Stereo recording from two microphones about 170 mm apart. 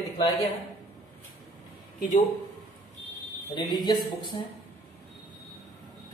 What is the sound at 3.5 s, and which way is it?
Speech, 25° left (ahead or behind).